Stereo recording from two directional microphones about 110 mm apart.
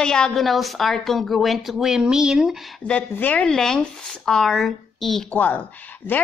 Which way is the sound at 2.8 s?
10° left (ahead or behind).